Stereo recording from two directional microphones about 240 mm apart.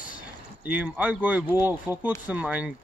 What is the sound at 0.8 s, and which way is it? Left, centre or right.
Speech, centre.